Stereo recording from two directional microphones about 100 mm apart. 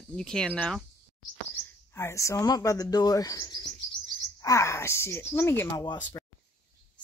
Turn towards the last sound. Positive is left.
turn(degrees=30)  # may be behind; listen again after turning